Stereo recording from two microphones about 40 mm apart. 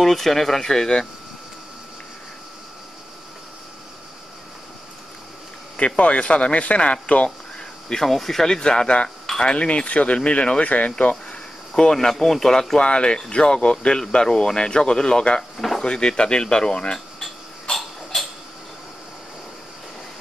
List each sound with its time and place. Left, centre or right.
0.0 s speech: centre
5.8 s speech: left
7.9 s speech: centre
8.5 s speech: centre
9.7 s speech: left
11.7 s speech: centre
12.8 s speech: left
15.5 s drawer open or close: centre
15.8 s speech: left
17.2 s a sound: centre